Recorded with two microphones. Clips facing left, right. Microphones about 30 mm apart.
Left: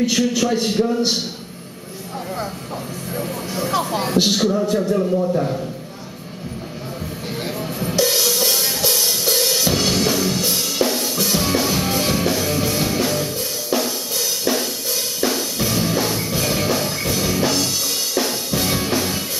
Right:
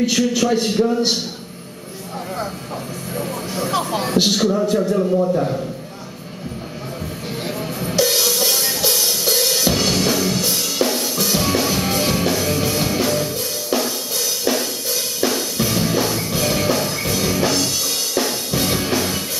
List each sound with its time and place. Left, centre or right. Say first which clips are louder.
0.0 s speech: right 1 dB; centre
3.2 s speech: right 1 dB; centre
7.4 s music: even; centre